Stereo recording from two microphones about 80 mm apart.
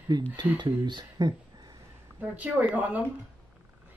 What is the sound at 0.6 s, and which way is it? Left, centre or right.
Speech, right.